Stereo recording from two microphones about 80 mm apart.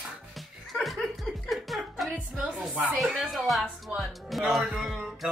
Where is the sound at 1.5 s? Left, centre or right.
Centre.